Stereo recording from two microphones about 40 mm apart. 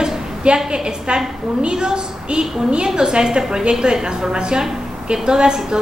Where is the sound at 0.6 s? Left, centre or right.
Right.